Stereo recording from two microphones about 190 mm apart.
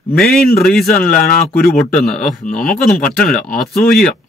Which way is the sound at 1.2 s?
50° left (ahead or behind).